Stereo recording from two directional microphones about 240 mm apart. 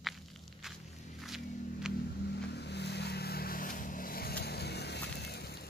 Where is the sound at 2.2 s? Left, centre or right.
Left.